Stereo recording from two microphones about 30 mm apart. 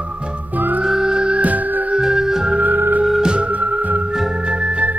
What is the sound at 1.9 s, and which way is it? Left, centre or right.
Music, right.